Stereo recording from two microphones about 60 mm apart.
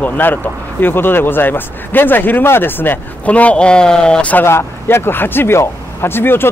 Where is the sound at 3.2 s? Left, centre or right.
Left.